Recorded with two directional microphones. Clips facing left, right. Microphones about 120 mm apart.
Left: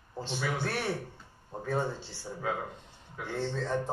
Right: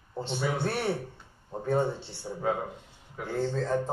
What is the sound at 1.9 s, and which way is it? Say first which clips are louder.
Speech: right 3 dB; 60° right (ahead or behind).